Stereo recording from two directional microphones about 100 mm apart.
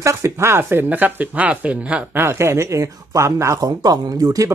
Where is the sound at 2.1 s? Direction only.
25° right (ahead or behind).